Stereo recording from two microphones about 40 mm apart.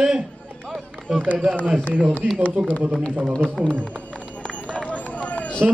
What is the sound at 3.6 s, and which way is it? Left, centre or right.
Speech, right.